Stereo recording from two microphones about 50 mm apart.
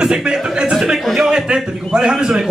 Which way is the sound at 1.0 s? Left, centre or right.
Centre.